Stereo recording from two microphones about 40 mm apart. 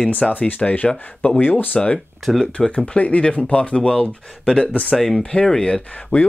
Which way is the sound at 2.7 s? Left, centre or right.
Left.